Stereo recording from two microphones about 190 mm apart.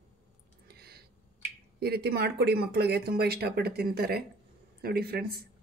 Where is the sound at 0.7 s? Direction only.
55° right (ahead or behind).